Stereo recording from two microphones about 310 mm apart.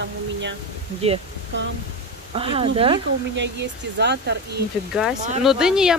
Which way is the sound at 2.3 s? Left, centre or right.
Centre.